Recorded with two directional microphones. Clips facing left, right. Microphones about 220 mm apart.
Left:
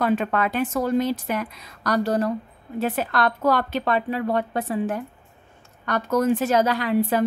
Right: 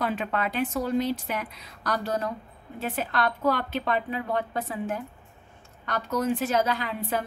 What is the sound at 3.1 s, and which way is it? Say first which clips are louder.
A woman's voice: left 1 dB; 85° left.